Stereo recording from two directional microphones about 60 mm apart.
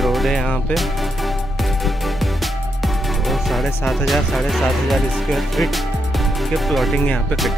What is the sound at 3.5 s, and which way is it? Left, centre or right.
Speech, centre.